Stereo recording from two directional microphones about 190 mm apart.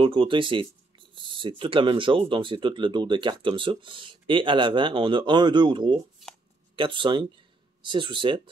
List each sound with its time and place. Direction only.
0.0 s speech: 25° right (ahead or behind)